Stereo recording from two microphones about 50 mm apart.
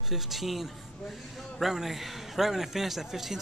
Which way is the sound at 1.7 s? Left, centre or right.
Centre.